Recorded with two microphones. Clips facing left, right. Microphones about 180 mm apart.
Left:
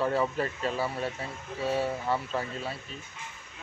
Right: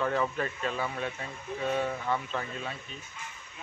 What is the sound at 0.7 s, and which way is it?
Speech, 5° left (ahead or behind).